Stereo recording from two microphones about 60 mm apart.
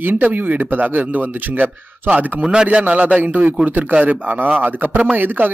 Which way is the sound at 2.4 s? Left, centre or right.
Centre.